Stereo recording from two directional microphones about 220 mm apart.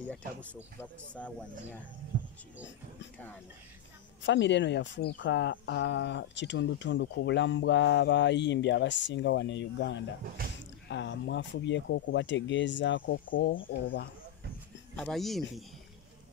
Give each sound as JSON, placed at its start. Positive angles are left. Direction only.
{"t": 0.0, "sound": "speech", "side_deg": 5}
{"t": 4.2, "sound": "speech", "side_deg": 55}
{"t": 15.0, "sound": "speech", "side_deg": 0}